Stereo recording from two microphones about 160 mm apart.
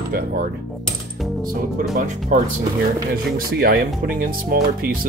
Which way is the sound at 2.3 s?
55° right (ahead or behind).